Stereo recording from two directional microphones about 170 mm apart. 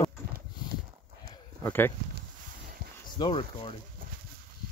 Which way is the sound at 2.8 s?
65° right (ahead or behind).